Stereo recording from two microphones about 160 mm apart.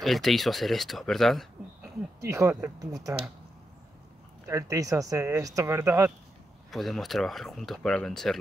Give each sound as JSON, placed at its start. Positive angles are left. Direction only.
{"t": 0.0, "sound": "speech", "side_deg": 0}
{"t": 2.2, "sound": "speech", "side_deg": -20}
{"t": 4.5, "sound": "speech", "side_deg": -20}
{"t": 6.7, "sound": "speech", "side_deg": 0}